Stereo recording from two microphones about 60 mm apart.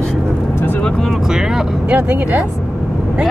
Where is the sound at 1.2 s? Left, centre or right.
Centre.